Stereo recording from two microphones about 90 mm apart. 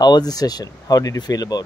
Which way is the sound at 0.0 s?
50° left (ahead or behind).